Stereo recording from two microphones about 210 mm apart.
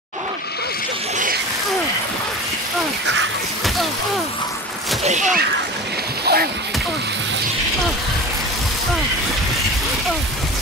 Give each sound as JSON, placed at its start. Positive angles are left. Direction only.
{"t": 5.0, "sound": "speech", "side_deg": -35}
{"t": 6.2, "sound": "speech", "side_deg": -45}